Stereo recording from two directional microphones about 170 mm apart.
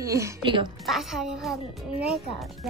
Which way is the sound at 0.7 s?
Centre (ahead or behind).